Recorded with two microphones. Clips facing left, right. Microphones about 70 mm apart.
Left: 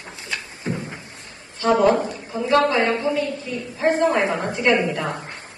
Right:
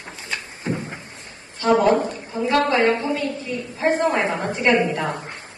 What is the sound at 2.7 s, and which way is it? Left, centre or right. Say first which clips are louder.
A woman's voice: right 1 dB; right.